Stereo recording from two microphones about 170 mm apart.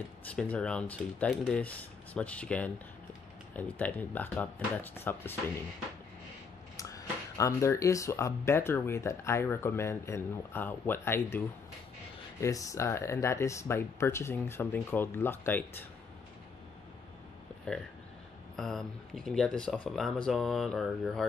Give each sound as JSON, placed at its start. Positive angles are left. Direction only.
{"t": 0.4, "sound": "speech", "side_deg": 5}
{"t": 3.7, "sound": "speech", "side_deg": 10}
{"t": 6.8, "sound": "speech", "side_deg": 20}
{"t": 18.6, "sound": "speech", "side_deg": 0}